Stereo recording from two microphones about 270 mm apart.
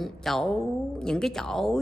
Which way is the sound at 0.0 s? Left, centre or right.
Centre.